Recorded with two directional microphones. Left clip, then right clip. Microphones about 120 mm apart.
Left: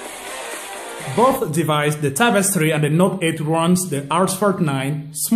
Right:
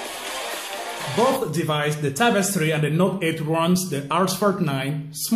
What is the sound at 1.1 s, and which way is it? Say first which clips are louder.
Speech: left 4 dB; 40° left (ahead or behind).